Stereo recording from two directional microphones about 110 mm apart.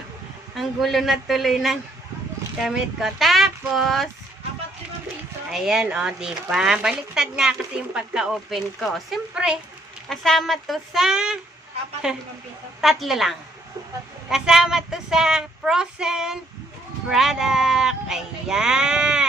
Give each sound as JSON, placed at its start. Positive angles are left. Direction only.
{"t": 0.6, "sound": "speech", "side_deg": 0}
{"t": 5.5, "sound": "speech", "side_deg": -5}
{"t": 10.0, "sound": "speech", "side_deg": 5}